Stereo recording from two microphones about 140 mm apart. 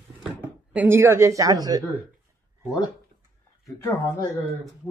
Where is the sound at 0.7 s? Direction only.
15° right (ahead or behind).